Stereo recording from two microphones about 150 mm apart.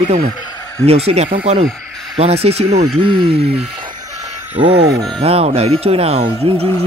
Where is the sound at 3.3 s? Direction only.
90° right.